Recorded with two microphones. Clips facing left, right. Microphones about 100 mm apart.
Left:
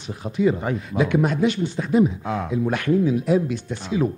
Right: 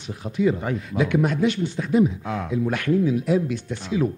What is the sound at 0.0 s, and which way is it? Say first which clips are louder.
Speech: left 1 dB; 30° left (ahead or behind).